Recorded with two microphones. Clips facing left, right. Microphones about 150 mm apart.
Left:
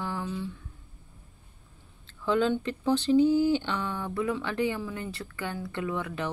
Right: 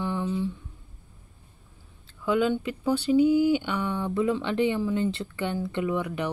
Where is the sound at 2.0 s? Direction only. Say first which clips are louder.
Right 1 dB; 10° right (ahead or behind).